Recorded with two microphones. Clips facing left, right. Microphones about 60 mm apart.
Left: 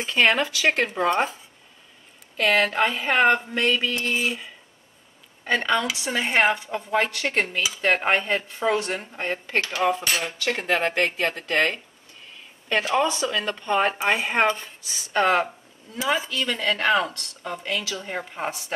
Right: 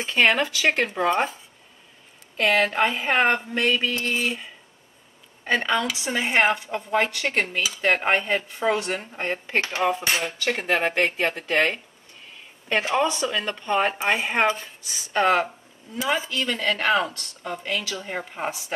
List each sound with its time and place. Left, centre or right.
0.0 s speech: centre
2.3 s speech: centre
9.6 s cutlery: right
10.2 s speech: centre
12.9 s speech: centre